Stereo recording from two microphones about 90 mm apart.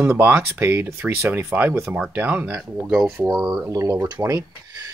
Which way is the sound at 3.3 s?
10° right (ahead or behind).